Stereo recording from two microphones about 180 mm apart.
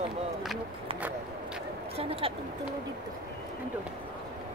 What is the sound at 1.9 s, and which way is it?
Speech, 35° right (ahead or behind).